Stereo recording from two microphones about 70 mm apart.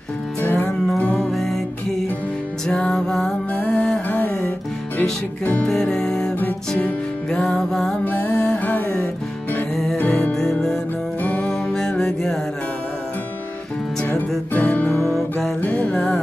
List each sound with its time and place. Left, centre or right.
0.4 s music: left
1.3 s music: centre
2.6 s music: centre
5.7 s music: centre
8.0 s music: left
10.3 s music: centre
14.5 s music: left